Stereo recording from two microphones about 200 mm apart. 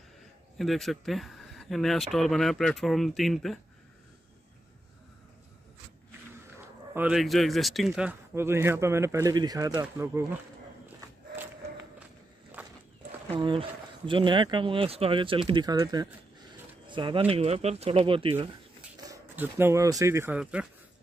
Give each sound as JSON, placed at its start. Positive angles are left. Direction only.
{"t": 0.6, "sound": "speech", "side_deg": 0}
{"t": 6.9, "sound": "speech", "side_deg": -5}
{"t": 13.3, "sound": "speech", "side_deg": -25}
{"t": 16.8, "sound": "a sound", "side_deg": -25}
{"t": 17.3, "sound": "speech", "side_deg": -30}
{"t": 19.0, "sound": "speech", "side_deg": -10}